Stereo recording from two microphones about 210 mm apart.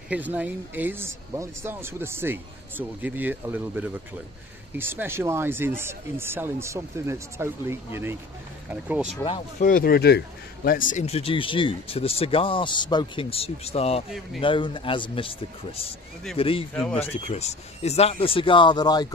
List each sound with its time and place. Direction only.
0.1 s speech: 5° right (ahead or behind)
9.6 s speech: 40° left (ahead or behind); by 19.0 s 20° left (ahead or behind)